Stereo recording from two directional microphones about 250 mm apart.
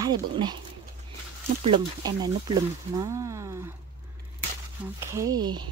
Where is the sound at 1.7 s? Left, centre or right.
Centre.